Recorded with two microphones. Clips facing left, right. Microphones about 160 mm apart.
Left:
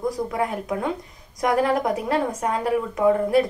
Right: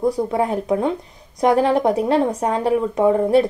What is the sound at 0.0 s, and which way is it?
Speech, 30° right (ahead or behind).